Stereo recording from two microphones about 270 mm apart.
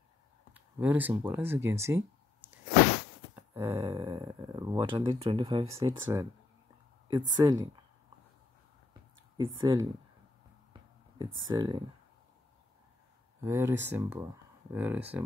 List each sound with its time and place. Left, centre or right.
0.5 s speech: centre
3.3 s a sound: centre
3.8 s speech: centre
9.6 s speech: centre
11.4 s speech: centre
13.5 s speech: centre